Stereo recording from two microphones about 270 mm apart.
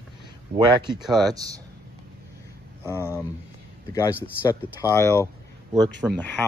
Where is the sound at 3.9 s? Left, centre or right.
Centre.